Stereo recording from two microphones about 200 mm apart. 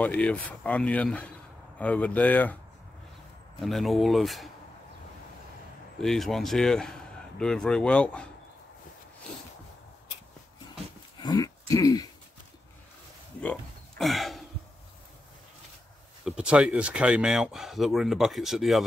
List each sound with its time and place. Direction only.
0.0 s speech: 5° left (ahead or behind)
3.6 s speech: centre (ahead or behind)
6.0 s speech: centre (ahead or behind)
11.1 s a sound: 20° left (ahead or behind)
13.4 s a sound: 5° left (ahead or behind)
16.3 s speech: 5° right (ahead or behind)